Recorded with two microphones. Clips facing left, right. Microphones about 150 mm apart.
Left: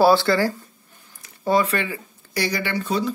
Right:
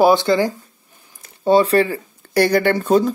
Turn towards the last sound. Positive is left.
turn(degrees=-50)  # may be behind; listen again after turning